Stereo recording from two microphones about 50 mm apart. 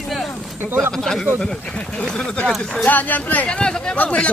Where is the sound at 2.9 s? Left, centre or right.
Left.